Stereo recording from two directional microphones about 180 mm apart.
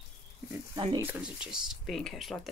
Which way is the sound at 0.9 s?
10° right (ahead or behind).